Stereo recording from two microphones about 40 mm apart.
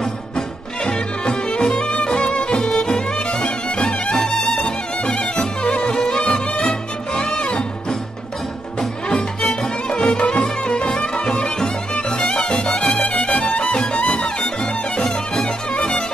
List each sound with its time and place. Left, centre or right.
0.8 s music: left
9.4 s music: centre
9.8 s music: left